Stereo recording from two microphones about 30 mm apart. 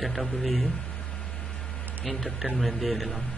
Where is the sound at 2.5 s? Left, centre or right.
Centre.